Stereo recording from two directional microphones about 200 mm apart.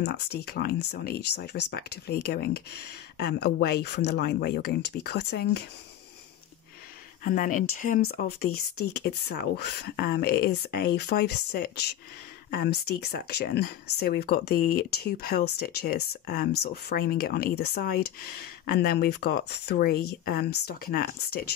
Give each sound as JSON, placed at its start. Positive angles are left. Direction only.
{"t": 0.0, "sound": "speech", "side_deg": 55}
{"t": 7.2, "sound": "speech", "side_deg": 45}